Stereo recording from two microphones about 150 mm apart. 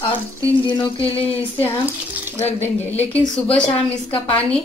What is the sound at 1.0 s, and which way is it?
Speech, 40° left (ahead or behind).